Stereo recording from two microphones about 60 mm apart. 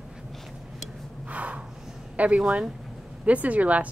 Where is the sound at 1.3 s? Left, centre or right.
Right.